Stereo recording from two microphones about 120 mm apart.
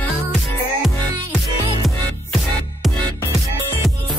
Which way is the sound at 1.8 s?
Centre (ahead or behind).